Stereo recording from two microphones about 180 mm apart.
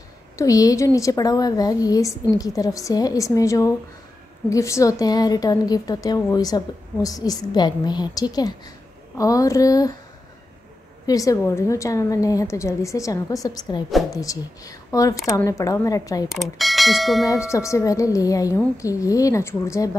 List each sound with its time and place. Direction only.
0.4 s a woman's voice: 20° left (ahead or behind)
11.1 s a woman's voice: 20° left (ahead or behind)
16.3 s speech: centre (ahead or behind)
17.3 s a woman's voice: 15° left (ahead or behind)